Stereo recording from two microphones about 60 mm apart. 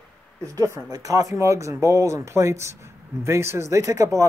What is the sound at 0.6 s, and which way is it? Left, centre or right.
Speech, right.